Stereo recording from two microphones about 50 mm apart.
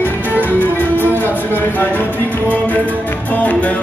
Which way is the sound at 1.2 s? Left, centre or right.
Left.